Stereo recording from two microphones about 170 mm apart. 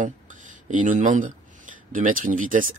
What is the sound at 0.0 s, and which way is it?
Speech, 50° right (ahead or behind).